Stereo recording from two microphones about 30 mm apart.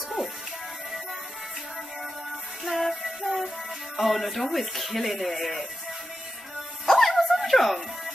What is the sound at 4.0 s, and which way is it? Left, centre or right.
Speech, centre.